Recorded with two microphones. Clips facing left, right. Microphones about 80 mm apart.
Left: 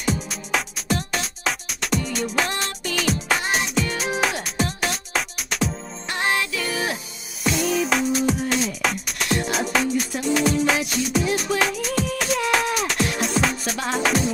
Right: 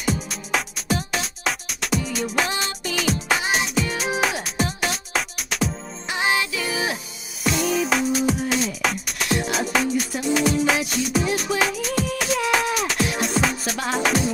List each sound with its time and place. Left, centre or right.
0.0 s music: centre